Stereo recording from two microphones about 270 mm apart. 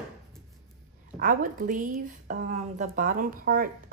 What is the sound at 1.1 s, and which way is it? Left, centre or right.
A woman's voice, right.